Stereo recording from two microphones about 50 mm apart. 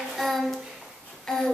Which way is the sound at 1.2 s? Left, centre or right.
Centre.